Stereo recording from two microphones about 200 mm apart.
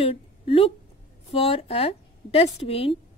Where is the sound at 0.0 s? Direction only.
30° left (ahead or behind).